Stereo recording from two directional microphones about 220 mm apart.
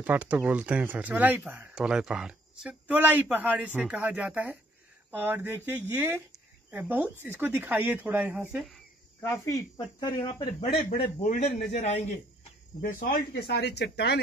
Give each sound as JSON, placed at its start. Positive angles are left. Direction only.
{"t": 0.0, "sound": "speech", "side_deg": -5}
{"t": 9.2, "sound": "a man's voice", "side_deg": 10}
{"t": 12.8, "sound": "speech", "side_deg": 40}